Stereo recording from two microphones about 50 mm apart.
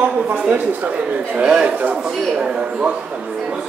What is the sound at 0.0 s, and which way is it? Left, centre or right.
A man's voice, right.